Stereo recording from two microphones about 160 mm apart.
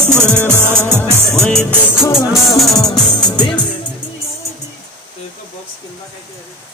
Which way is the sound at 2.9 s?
25° left (ahead or behind).